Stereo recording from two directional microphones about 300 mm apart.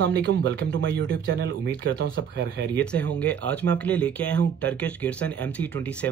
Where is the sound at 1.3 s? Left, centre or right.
Right.